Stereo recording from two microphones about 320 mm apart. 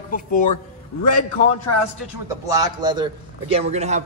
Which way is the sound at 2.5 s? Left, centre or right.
Centre.